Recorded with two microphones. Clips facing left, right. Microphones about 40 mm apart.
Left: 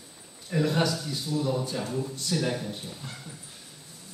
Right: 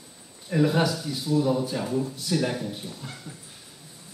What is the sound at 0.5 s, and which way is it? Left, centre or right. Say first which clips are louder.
Speech: right 3 dB; centre.